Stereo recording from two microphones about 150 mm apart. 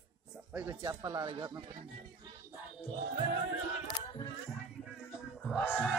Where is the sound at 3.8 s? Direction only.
30° left (ahead or behind).